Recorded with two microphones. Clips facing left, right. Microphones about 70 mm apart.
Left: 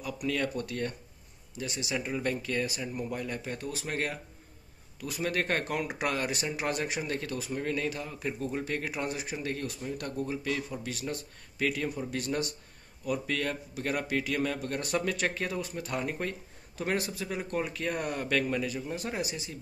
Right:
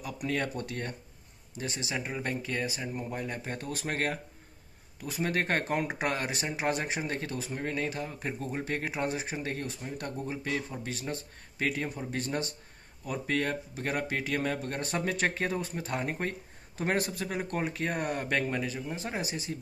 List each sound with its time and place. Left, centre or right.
0.0 s speech: right
2.0 s speech: right